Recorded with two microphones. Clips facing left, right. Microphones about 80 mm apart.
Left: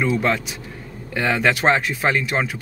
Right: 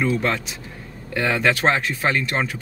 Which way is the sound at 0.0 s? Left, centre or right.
Centre.